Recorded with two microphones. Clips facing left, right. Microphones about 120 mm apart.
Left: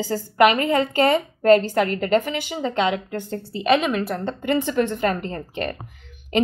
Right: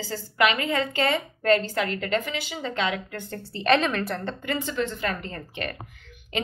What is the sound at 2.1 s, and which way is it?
Speech, 45° left (ahead or behind).